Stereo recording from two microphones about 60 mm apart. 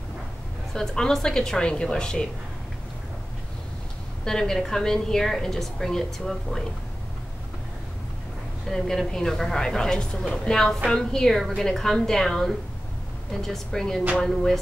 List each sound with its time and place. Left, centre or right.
0.7 s a woman's voice: centre
4.2 s a woman's voice: centre
8.6 s a woman's voice: centre